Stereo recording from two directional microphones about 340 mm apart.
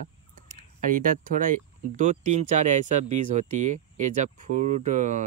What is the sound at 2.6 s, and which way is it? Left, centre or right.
Speech, right.